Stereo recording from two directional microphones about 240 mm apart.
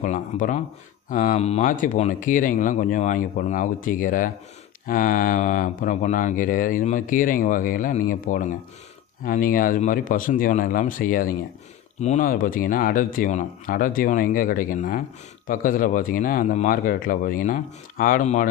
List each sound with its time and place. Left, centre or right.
0.0 s speech: left